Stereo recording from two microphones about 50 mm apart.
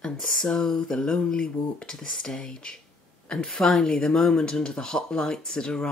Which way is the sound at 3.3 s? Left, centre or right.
Centre.